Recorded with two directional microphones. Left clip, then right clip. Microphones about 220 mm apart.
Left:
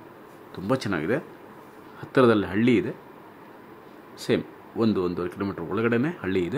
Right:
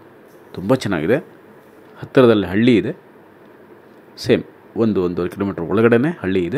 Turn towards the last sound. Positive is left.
turn(degrees=-10)  # may be behind; listen again after turning